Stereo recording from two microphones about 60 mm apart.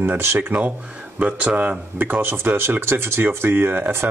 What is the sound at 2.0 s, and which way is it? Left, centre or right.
Speech, right.